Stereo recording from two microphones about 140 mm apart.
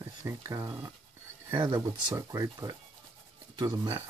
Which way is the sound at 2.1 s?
20° right (ahead or behind).